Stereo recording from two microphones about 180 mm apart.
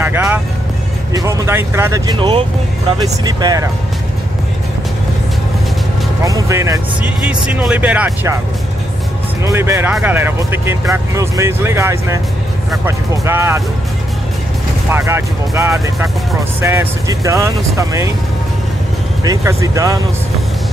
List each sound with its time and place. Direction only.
0.0 s music: 10° right (ahead or behind)
1.1 s speech: 15° right (ahead or behind)
6.2 s speech: 15° right (ahead or behind)
9.4 s speech: 15° right (ahead or behind)
14.9 s speech: 15° right (ahead or behind)
19.2 s speech: 20° right (ahead or behind)